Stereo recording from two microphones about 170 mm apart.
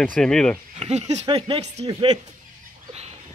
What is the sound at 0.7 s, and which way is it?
Speech, 35° right (ahead or behind).